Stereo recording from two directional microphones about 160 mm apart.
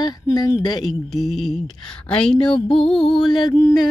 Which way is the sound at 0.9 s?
Centre (ahead or behind).